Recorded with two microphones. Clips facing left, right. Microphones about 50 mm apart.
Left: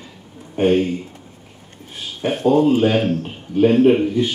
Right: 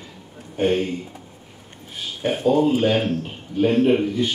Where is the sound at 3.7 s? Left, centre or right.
Centre.